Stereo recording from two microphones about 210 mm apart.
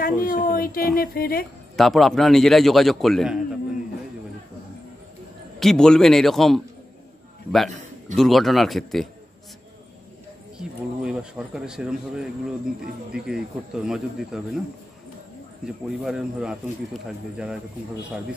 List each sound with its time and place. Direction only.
0.0 s speech: 40° left (ahead or behind)
1.8 s speech: centre (ahead or behind)
5.6 s speech: centre (ahead or behind)
8.2 s speech: centre (ahead or behind)
10.6 s speech: 5° right (ahead or behind)
13.1 s speech: 5° right (ahead or behind)
15.6 s speech: centre (ahead or behind)